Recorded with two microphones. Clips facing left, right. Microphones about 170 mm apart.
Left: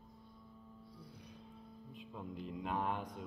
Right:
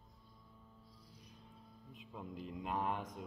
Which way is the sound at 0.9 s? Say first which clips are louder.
Left 7 dB; 60° left (ahead or behind).